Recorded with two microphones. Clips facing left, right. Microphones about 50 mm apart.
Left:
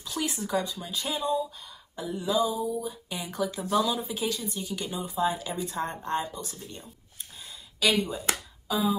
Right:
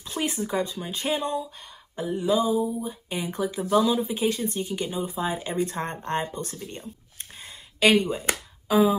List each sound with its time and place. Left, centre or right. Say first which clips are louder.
0.0 s speech: right 3 dB; right
7.8 s speech: right 6 dB; right
8.6 s speech: right 7 dB; right